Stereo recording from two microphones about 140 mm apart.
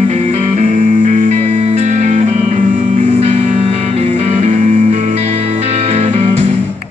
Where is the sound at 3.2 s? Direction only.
50° right (ahead or behind).